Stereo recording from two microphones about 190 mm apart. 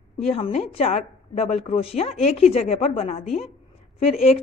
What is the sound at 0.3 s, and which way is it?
A woman's voice, 35° left (ahead or behind).